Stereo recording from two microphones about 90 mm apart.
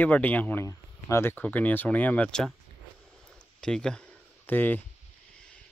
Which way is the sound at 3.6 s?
10° left (ahead or behind).